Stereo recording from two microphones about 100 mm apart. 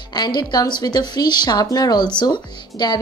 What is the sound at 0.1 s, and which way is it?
A woman's voice, 45° left (ahead or behind).